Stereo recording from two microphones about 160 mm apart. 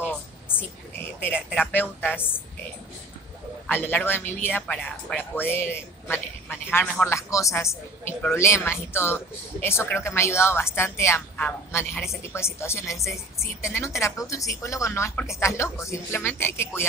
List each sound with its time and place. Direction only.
1.2 s speech: 10° left (ahead or behind)
3.6 s speech: 10° left (ahead or behind)